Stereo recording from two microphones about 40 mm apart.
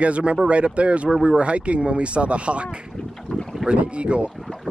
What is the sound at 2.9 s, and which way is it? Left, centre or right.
Boat, centre.